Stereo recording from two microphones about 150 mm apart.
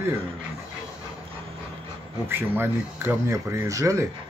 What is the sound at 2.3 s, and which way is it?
Speech, 15° right (ahead or behind).